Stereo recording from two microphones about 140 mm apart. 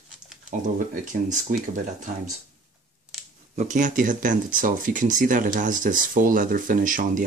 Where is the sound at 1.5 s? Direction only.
80° right.